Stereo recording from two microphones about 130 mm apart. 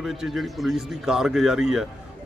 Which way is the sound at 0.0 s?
Centre (ahead or behind).